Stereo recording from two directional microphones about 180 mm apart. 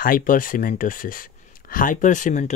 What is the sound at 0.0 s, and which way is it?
Speech, 50° left (ahead or behind).